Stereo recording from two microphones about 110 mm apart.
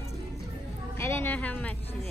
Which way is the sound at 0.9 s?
20° left (ahead or behind).